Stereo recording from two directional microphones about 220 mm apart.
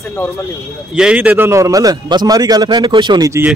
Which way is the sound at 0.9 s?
5° right (ahead or behind).